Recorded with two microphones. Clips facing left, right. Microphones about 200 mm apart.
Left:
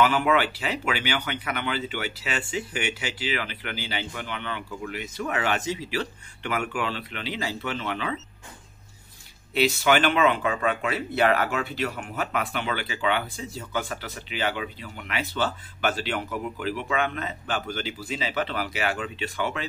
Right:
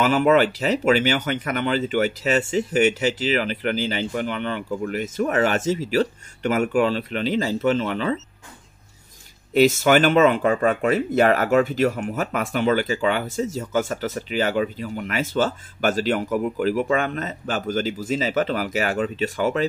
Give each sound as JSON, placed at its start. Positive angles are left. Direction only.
{"t": 0.0, "sound": "speech", "side_deg": -40}
{"t": 9.5, "sound": "speech", "side_deg": -45}